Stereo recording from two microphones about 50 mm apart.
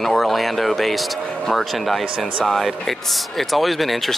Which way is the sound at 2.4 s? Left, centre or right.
Centre.